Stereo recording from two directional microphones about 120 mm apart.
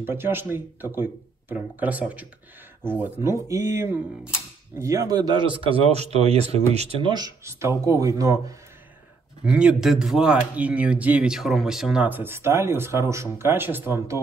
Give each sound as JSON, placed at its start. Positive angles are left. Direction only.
{"t": 0.0, "sound": "speech", "side_deg": -20}
{"t": 3.0, "sound": "speech", "side_deg": -25}
{"t": 7.0, "sound": "speech", "side_deg": -35}
{"t": 7.4, "sound": "speech", "side_deg": -25}
{"t": 9.5, "sound": "speech", "side_deg": -10}